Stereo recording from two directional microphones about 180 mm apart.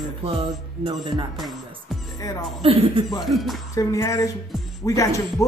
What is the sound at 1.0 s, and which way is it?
Music, 25° right (ahead or behind).